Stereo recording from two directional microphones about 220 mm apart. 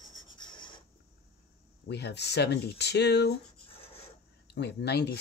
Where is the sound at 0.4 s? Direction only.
20° left (ahead or behind).